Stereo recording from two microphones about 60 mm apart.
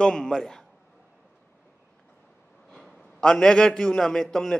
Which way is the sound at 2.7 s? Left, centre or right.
Centre.